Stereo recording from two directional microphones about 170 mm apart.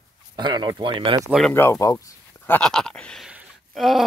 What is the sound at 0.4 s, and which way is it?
Speech, 25° right (ahead or behind).